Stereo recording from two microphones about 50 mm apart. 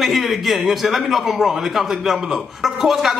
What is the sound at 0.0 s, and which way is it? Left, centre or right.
Speech, centre.